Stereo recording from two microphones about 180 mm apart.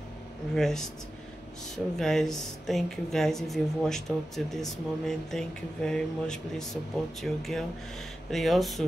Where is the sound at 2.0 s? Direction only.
Centre (ahead or behind).